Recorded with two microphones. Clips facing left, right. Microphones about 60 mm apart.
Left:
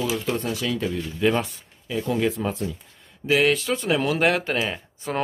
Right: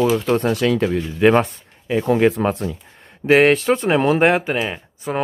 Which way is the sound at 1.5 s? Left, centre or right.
Right.